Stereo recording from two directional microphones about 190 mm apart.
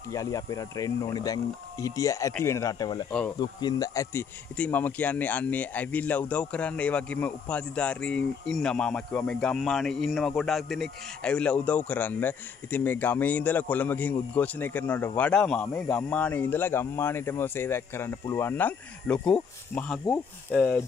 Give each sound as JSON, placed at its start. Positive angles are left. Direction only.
{"t": 0.1, "sound": "speech", "side_deg": 15}
{"t": 3.1, "sound": "speech", "side_deg": 5}
{"t": 3.3, "sound": "speech", "side_deg": 20}